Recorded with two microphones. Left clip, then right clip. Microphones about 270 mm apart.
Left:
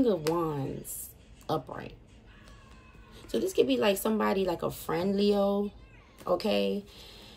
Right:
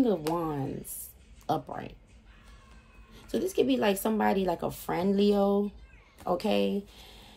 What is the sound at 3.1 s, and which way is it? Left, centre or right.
Speech, right.